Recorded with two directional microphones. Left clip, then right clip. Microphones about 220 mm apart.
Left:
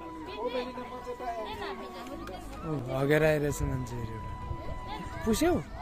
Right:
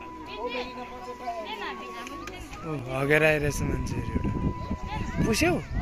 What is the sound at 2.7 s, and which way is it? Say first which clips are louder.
Speech: right 3 dB; centre (ahead or behind).